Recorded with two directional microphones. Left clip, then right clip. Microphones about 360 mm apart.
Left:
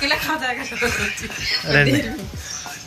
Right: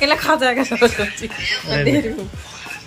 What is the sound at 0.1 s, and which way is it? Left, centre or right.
Speech, centre.